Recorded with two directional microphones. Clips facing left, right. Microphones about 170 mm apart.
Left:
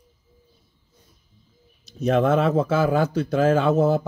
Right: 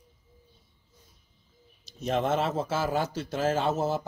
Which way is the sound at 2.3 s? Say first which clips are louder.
Left 8 dB; 60° left (ahead or behind).